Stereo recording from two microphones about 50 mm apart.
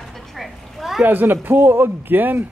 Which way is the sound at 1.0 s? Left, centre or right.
Right.